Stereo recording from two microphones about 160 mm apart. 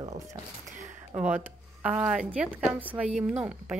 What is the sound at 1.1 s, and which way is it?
Speech, 10° right (ahead or behind).